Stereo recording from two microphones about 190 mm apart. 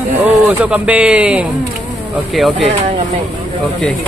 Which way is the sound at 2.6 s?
35° right (ahead or behind).